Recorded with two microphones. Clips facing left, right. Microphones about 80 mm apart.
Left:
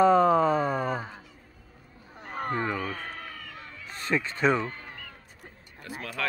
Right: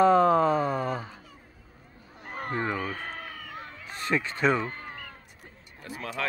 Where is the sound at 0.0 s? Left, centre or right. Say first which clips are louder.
Even; centre.